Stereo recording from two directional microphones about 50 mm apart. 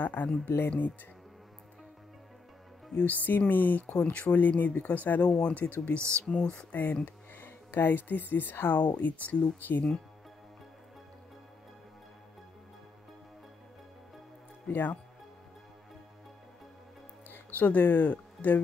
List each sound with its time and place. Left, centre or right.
0.0 s speech: left
3.1 s speech: left
5.9 s speech: right
6.4 s speech: left
6.7 s speech: left
7.4 s speech: left
8.8 s speech: left
14.7 s speech: left
17.3 s speech: left